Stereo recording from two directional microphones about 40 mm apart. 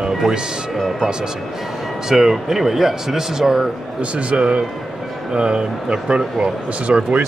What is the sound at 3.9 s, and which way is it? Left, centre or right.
Speech, right.